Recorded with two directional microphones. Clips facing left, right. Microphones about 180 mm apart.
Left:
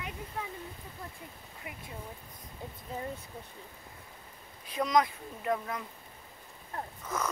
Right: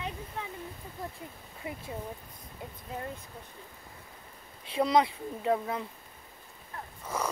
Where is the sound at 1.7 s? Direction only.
30° right (ahead or behind).